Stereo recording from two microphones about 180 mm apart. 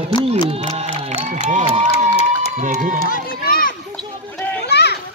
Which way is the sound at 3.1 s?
50° left (ahead or behind).